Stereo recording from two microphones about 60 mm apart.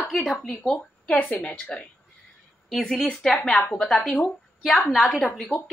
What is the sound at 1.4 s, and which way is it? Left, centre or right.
Speech, centre.